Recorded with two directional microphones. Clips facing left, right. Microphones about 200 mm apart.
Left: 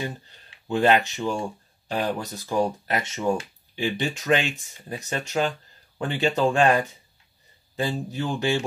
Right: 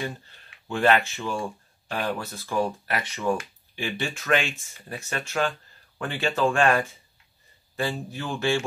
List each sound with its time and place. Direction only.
0.0 s speech: 20° left (ahead or behind)